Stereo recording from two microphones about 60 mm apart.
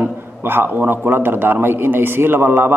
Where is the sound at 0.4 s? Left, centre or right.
Right.